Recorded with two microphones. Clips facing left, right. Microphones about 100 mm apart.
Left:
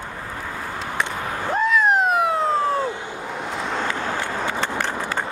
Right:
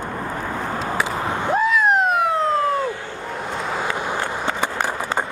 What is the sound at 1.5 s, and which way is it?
Police car, centre (ahead or behind).